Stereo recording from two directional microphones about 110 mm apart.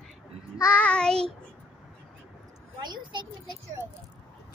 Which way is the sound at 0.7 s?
10° left (ahead or behind).